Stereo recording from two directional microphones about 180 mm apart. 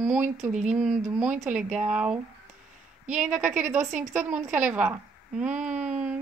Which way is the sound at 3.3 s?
5° right (ahead or behind).